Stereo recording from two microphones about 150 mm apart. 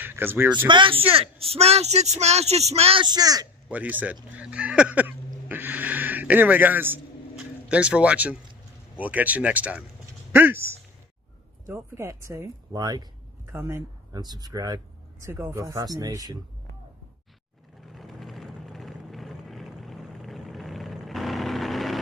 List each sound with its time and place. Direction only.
0.0 s speech: 15° right (ahead or behind)
0.7 s speech: 35° right (ahead or behind)
3.6 s speech: 10° right (ahead or behind); by 16.3 s 25° right (ahead or behind)
17.9 s vehicle: centre (ahead or behind)